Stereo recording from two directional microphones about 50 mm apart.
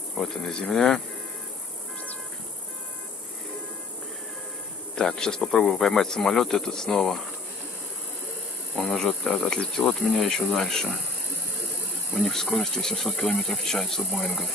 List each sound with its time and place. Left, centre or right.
0.2 s speech: centre
4.9 s speech: centre
8.8 s speech: centre
12.2 s speech: centre